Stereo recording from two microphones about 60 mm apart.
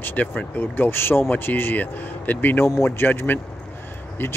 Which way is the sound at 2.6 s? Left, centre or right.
Left.